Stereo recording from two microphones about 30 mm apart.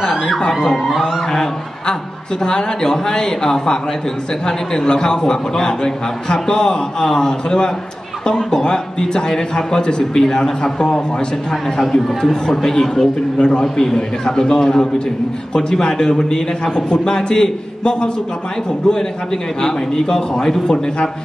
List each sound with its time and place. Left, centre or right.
0.5 s a man's voice: centre
0.9 s speech: centre
2.4 s a man's voice: left
11.9 s a man's voice: centre
16.1 s a man's voice: left